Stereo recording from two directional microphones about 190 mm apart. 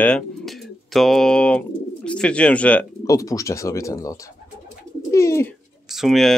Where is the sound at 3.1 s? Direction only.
15° left (ahead or behind).